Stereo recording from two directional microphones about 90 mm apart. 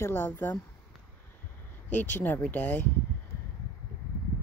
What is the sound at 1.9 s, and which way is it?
Speech, 20° left (ahead or behind).